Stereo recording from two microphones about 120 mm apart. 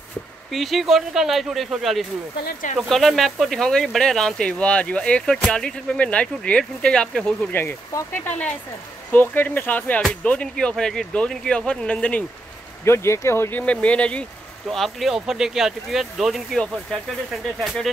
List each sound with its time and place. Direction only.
0.5 s speech: centre (ahead or behind)
7.5 s speech: 20° left (ahead or behind)
12.8 s speech: 20° left (ahead or behind); by 17.9 s 5° left (ahead or behind)